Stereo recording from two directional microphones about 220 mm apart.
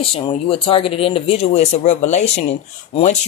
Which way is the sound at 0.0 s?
25° left (ahead or behind).